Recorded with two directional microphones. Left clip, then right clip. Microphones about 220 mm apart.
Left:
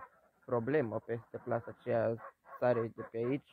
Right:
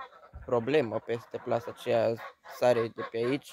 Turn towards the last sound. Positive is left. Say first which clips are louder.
# right 6 dB
turn(degrees=-20)  # may be behind; listen again after turning